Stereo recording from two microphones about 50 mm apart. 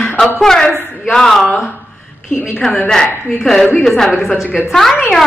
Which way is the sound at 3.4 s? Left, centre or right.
Centre.